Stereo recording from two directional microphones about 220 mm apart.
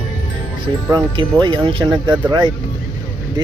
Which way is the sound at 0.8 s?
15° right (ahead or behind).